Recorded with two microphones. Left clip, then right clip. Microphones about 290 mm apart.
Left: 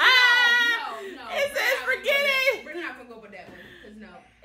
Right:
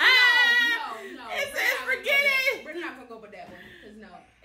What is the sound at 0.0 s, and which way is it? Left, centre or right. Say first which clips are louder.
Baby cry: left 1 dB; centre.